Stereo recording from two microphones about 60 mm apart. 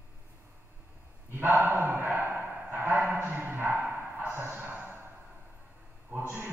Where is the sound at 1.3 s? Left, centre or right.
Right.